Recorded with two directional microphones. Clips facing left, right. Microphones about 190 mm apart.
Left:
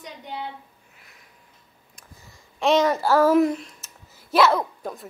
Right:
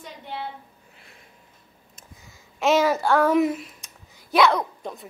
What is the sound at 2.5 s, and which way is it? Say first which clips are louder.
Speech: even; 5° right (ahead or behind).